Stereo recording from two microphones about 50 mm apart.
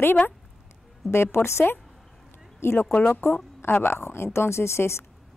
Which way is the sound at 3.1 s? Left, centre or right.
Left.